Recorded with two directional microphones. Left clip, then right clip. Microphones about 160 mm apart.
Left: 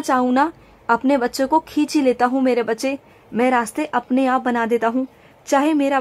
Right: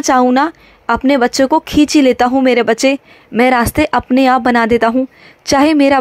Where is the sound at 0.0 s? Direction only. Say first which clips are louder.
Right 7 dB; 30° right (ahead or behind).